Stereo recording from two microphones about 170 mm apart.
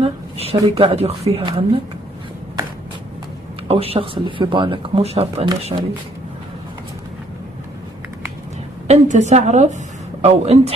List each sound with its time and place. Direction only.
0.0 s a sound: 35° right (ahead or behind)
0.7 s speech: 35° right (ahead or behind)
3.6 s speech: 35° right (ahead or behind)
8.8 s a woman's voice: 40° right (ahead or behind)